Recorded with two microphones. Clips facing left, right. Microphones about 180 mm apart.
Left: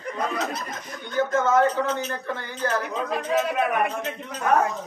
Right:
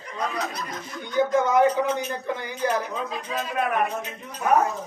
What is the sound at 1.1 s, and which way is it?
A man's voice, 15° right (ahead or behind).